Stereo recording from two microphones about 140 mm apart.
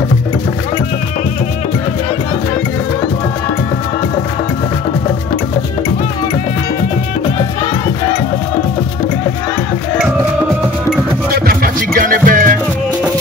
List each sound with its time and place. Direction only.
11.3 s music: 90° right